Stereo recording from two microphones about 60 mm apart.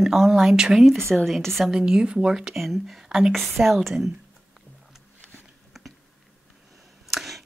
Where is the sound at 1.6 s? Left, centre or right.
Centre.